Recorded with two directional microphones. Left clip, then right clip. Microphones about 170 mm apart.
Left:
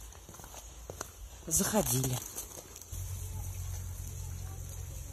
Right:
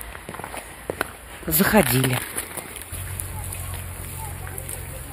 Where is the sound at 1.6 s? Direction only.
5° left (ahead or behind).